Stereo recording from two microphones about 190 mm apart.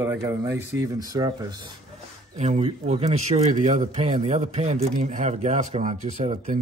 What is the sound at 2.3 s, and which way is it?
A man's voice, 35° right (ahead or behind).